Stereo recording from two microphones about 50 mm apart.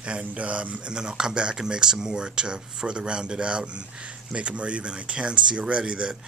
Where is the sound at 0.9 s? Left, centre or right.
Centre.